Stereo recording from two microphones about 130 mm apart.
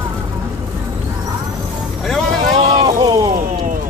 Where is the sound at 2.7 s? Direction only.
30° right (ahead or behind).